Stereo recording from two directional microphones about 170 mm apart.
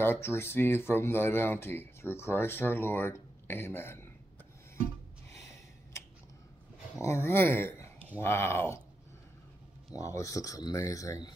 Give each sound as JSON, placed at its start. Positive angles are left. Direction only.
{"t": 0.0, "sound": "speech", "side_deg": 15}
{"t": 7.0, "sound": "speech", "side_deg": 15}
{"t": 9.9, "sound": "speech", "side_deg": 20}